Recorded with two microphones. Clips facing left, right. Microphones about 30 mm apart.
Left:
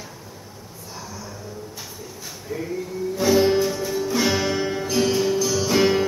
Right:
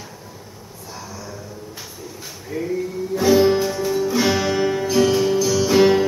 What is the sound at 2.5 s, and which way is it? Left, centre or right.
Speech, right.